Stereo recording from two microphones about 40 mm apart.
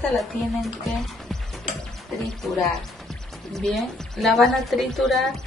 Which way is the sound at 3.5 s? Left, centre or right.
Centre.